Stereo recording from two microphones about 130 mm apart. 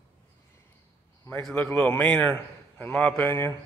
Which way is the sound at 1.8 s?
10° left (ahead or behind).